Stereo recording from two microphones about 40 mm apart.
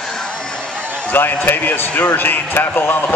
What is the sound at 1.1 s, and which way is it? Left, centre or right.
A man's voice, left.